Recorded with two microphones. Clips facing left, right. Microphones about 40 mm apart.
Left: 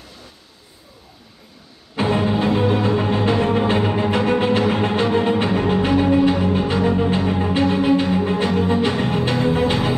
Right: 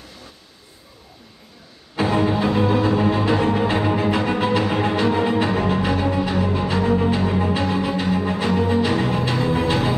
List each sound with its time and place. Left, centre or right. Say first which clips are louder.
2.0 s music: even; left